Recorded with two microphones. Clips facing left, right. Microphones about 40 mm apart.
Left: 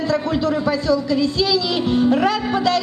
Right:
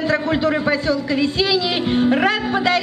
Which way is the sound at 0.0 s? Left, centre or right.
Right.